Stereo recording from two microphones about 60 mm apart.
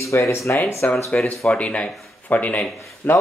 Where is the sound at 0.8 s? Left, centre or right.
Left.